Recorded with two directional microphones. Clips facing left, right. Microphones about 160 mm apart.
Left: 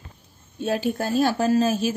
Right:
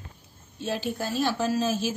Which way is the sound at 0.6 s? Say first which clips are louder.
Left 6 dB; 55° left (ahead or behind).